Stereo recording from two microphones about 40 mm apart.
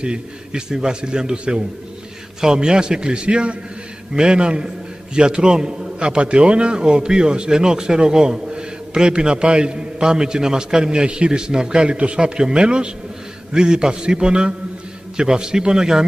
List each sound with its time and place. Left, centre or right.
0.0 s a man's voice: right